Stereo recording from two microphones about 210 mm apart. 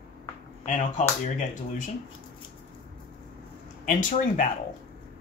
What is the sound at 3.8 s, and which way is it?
Speech, 35° left (ahead or behind).